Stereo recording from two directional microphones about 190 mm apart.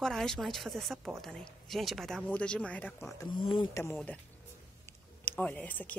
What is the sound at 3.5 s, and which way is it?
Speech, 25° left (ahead or behind).